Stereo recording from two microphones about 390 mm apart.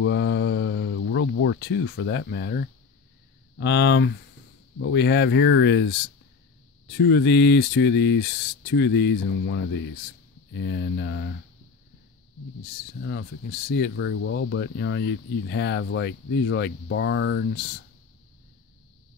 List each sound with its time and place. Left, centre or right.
0.0 s mantra: left
3.5 s speech: left
13.7 s speech: left